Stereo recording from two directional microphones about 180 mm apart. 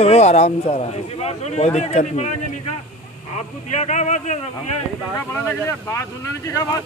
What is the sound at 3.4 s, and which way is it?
Speech, 40° left (ahead or behind).